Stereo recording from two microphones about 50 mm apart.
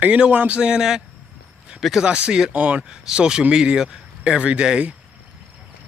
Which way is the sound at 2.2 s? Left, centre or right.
Centre.